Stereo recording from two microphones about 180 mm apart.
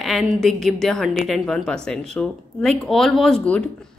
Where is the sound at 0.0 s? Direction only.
Centre (ahead or behind).